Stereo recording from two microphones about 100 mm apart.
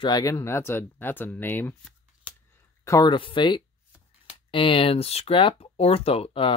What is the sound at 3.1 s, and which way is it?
Speech, 55° left (ahead or behind).